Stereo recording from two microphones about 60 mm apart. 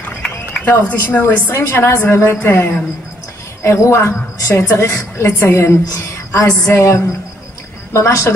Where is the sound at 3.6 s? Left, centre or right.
Left.